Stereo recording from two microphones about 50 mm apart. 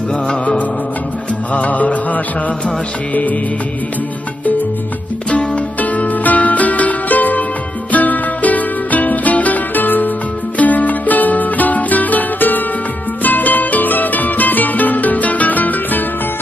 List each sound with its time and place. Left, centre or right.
1.5 s music: left
5.3 s music: left